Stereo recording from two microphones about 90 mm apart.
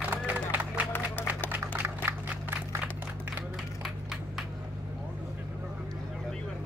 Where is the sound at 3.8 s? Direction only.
5° right (ahead or behind).